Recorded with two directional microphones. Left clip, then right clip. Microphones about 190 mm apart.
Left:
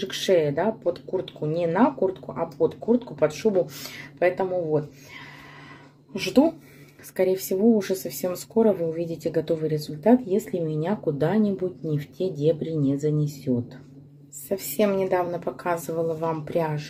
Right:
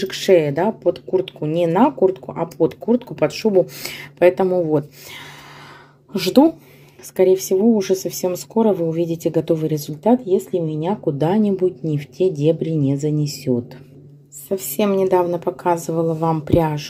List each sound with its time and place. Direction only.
0.0 s speech: 25° right (ahead or behind)
6.1 s a woman's voice: 35° right (ahead or behind)
7.2 s speech: 25° right (ahead or behind)
14.5 s a woman's voice: 30° right (ahead or behind)